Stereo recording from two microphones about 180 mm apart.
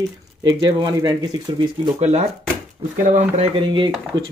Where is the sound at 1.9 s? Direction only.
35° right (ahead or behind).